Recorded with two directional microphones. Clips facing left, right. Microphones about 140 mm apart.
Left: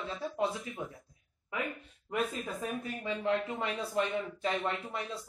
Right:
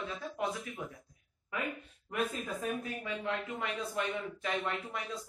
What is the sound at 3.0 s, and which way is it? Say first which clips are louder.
Speech: left 7 dB; 30° left (ahead or behind).